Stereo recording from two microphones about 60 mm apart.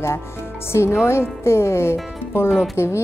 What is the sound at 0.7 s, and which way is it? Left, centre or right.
Speech, left.